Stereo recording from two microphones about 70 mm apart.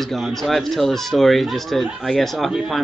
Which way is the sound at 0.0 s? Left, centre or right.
Centre.